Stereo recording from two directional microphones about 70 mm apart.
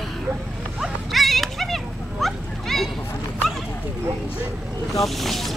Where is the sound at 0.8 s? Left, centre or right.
Centre.